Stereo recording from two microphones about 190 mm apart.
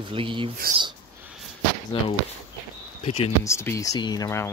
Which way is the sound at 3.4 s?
15° left (ahead or behind).